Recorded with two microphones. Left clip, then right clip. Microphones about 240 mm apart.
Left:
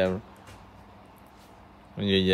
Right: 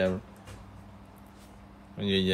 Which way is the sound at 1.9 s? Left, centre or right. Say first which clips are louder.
Left 3 dB; left.